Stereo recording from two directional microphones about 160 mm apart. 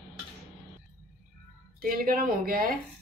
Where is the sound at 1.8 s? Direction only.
65° right (ahead or behind).